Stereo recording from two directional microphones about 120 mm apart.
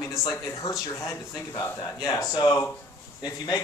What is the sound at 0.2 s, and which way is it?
Speech, 25° left (ahead or behind).